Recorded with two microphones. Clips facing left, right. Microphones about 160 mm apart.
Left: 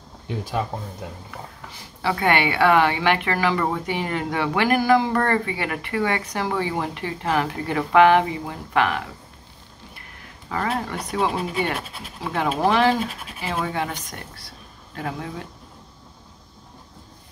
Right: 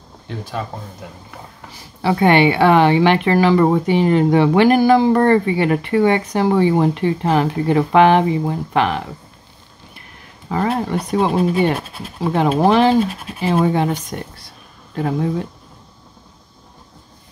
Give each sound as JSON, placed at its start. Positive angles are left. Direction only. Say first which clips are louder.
{"t": 2.0, "sound": "speech", "louder": "right 7 dB", "side_deg": -30}
{"t": 10.5, "sound": "speech", "louder": "right 7 dB", "side_deg": -30}